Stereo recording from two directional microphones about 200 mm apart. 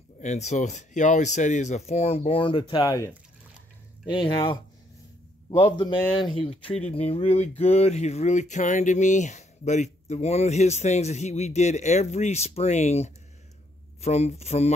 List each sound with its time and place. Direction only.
0.2 s speech: 35° left (ahead or behind); by 3.2 s 15° left (ahead or behind)
5.5 s speech: 20° left (ahead or behind)